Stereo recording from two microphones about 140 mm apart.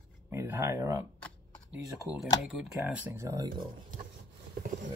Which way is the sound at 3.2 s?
25° right (ahead or behind).